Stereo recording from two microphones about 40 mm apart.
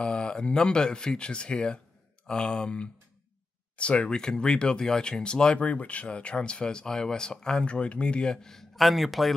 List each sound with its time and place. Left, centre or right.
0.0 s speech: left
4.1 s speech: centre
5.6 s speech: left
8.5 s speech: centre